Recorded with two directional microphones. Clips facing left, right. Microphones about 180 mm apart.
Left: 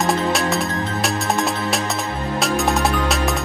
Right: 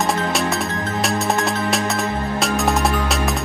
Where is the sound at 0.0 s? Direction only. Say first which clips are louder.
Left 1 dB; centre (ahead or behind).